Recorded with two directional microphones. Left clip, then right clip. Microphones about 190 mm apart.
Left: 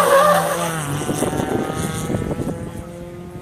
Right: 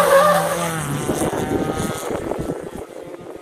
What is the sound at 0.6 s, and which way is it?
Vehicle, 5° left (ahead or behind).